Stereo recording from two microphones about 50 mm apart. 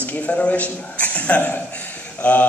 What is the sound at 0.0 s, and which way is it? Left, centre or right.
A man's voice, left.